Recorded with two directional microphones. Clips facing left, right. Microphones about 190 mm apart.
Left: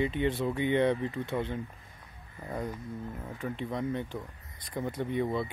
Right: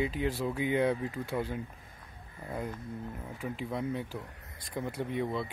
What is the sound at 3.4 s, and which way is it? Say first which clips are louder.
Speech: left 1 dB; 5° right (ahead or behind).